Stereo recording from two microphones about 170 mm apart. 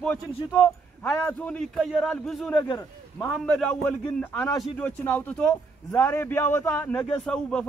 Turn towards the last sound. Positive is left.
turn(degrees=5)  # may be behind; listen again after turning